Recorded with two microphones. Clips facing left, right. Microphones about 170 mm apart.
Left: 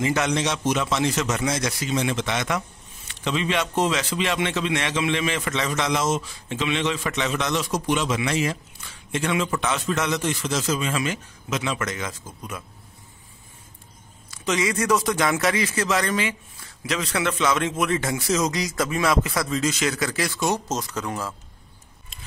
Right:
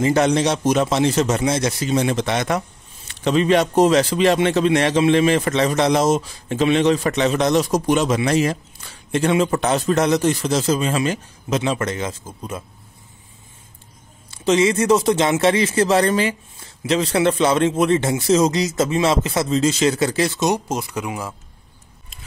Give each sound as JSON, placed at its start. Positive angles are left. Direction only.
{"t": 0.0, "sound": "a man's voice", "side_deg": -35}
{"t": 14.3, "sound": "speech", "side_deg": -30}